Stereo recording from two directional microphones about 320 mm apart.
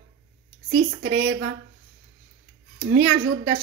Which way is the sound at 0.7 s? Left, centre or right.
Right.